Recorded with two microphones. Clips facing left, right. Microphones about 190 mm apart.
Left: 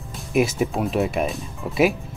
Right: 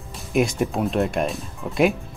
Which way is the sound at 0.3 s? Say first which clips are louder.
Left 1 dB; centre (ahead or behind).